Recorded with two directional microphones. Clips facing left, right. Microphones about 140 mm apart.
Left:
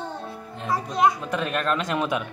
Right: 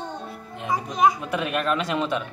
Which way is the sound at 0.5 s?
10° right (ahead or behind).